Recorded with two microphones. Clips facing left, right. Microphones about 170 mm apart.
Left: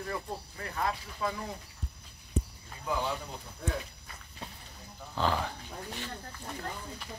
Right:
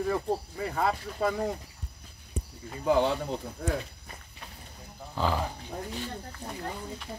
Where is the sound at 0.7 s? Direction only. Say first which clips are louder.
Right 4 dB; 65° right (ahead or behind).